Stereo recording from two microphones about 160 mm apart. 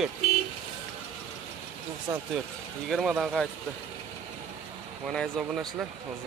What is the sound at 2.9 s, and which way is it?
Speech, 5° right (ahead or behind).